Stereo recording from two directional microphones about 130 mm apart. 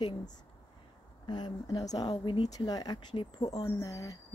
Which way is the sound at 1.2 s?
35° left (ahead or behind).